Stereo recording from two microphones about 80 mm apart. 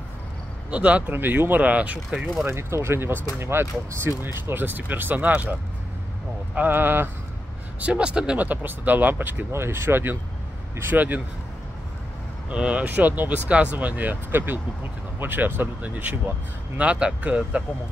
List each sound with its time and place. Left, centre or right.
0.7 s speech: centre
2.4 s speech: right
7.8 s speech: centre
12.4 s speech: centre